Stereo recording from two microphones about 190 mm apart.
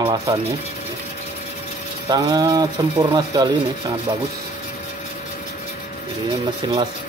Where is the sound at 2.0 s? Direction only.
20° right (ahead or behind).